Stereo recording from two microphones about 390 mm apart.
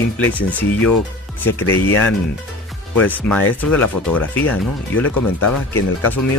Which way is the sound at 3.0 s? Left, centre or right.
Centre.